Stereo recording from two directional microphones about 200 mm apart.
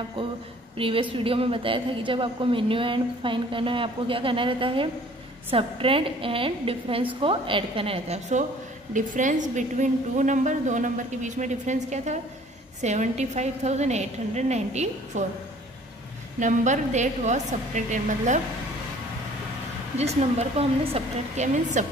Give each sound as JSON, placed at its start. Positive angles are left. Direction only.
{"t": 0.2, "sound": "a sound", "side_deg": -25}
{"t": 0.7, "sound": "a woman's voice", "side_deg": -25}
{"t": 16.3, "sound": "a woman's voice", "side_deg": -40}
{"t": 20.0, "sound": "a woman's voice", "side_deg": -30}